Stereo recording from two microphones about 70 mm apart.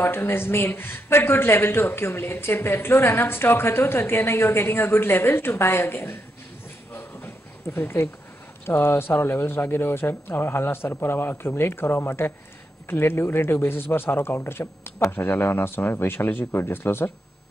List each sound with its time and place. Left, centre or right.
0.0 s speech: left
6.9 s a sound: left
7.7 s speech: left